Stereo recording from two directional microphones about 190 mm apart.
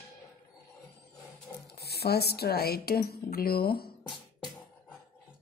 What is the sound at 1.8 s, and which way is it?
A woman's voice, 60° left (ahead or behind).